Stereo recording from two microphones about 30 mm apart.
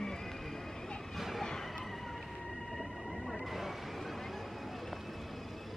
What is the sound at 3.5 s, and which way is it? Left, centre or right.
Vehicle, centre.